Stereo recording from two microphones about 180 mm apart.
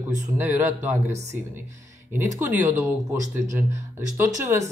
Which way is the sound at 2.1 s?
10° right (ahead or behind).